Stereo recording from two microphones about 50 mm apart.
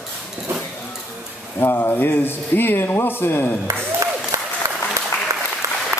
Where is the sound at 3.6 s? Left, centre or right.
Right.